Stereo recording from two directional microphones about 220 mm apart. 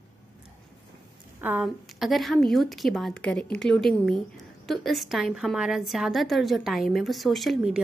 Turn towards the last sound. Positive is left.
turn(degrees=0)  # may be behind; listen again after turning